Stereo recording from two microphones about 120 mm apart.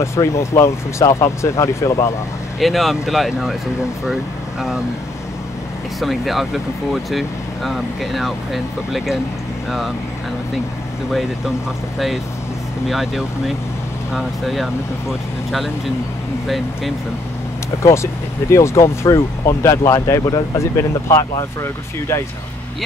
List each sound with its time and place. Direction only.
0.0 s speech: 25° left (ahead or behind)
2.6 s speech: centre (ahead or behind)
5.9 s speech: centre (ahead or behind)
11.1 s speech: centre (ahead or behind)
12.8 s speech: centre (ahead or behind)
17.8 s speech: 25° left (ahead or behind)